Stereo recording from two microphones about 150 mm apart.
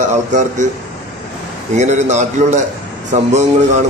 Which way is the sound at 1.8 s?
50° right (ahead or behind).